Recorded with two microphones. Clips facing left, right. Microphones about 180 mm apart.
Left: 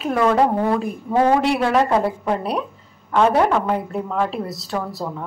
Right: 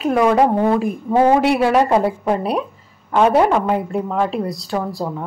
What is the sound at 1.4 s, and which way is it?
Speech, 5° right (ahead or behind).